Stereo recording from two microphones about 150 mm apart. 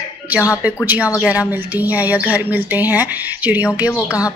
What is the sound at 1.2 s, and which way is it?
Speech, 10° right (ahead or behind).